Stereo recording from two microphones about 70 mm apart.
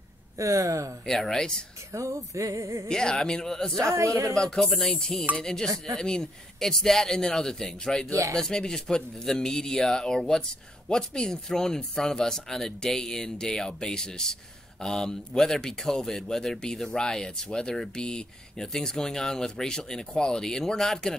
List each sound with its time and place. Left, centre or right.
0.4 s speech: right
1.0 s speech: centre
1.9 s speech: right
2.9 s speech: centre
3.8 s speech: right
4.4 s speech: centre